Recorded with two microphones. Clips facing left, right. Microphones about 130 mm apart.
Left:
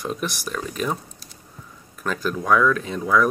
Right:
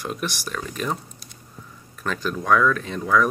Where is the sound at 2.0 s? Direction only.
5° left (ahead or behind).